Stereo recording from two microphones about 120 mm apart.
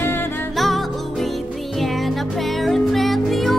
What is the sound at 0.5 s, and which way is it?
Music, centre (ahead or behind).